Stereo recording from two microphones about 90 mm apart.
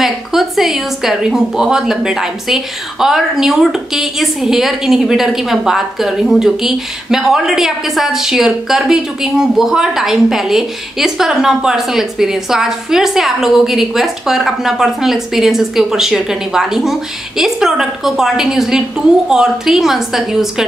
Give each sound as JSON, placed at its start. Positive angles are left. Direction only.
{"t": 0.0, "sound": "a woman's voice", "side_deg": -5}